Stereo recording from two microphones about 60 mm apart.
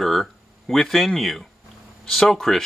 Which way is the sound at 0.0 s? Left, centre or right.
Centre.